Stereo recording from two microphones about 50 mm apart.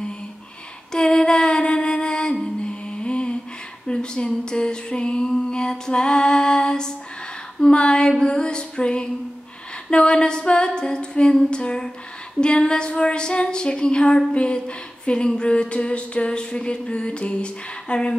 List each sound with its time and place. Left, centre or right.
0.9 s music: centre
3.8 s a sound: centre
8.2 s music: centre
9.8 s female singing: centre